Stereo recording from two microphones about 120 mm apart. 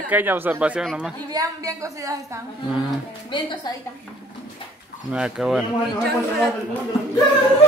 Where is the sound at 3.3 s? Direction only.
40° left (ahead or behind).